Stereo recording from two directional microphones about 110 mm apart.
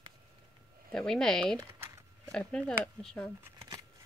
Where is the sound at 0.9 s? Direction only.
5° left (ahead or behind).